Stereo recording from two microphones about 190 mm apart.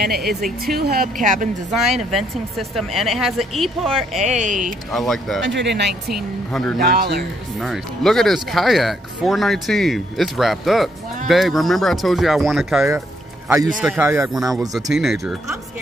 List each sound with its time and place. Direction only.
0.0 s speech: 55° right (ahead or behind)
0.3 s speech: centre (ahead or behind)
0.7 s speech: 50° right (ahead or behind)
1.7 s speech: centre (ahead or behind)
4.2 s speech: 40° right (ahead or behind)
4.9 s speech: centre (ahead or behind)
5.4 s speech: 70° right (ahead or behind)
6.1 s speech: 5° left (ahead or behind)
6.8 s speech: 60° right (ahead or behind)
7.6 s speech: centre (ahead or behind)
14.0 s speech: 15° right (ahead or behind)
14.7 s speech: centre (ahead or behind)